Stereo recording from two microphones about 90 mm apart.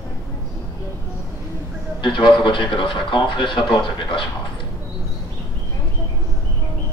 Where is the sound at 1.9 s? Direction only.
65° left (ahead or behind).